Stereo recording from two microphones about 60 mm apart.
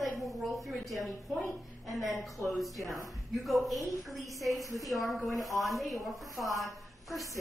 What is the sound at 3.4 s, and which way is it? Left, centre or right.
A woman's voice, centre.